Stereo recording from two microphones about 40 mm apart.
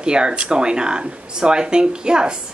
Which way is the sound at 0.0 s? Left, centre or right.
Right.